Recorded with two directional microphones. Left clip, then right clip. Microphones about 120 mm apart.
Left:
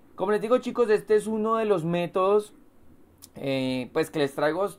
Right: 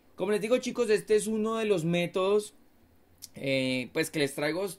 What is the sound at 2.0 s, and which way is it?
Speech, 30° right (ahead or behind).